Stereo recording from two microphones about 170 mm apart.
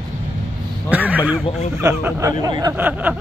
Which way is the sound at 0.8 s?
10° right (ahead or behind).